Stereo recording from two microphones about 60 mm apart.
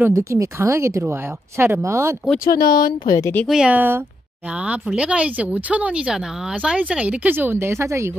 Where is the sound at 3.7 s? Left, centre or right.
Right.